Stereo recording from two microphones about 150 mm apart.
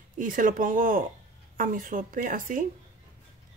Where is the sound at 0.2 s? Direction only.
65° right (ahead or behind).